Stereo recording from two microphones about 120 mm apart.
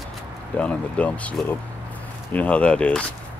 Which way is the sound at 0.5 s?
10° left (ahead or behind).